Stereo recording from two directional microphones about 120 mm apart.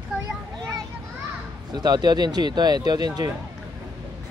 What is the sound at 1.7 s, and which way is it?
Speech, 35° right (ahead or behind).